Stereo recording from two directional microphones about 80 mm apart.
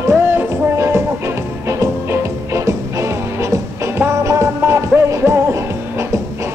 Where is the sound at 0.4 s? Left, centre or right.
Right.